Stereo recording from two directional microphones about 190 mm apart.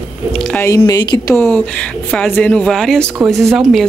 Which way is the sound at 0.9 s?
20° left (ahead or behind).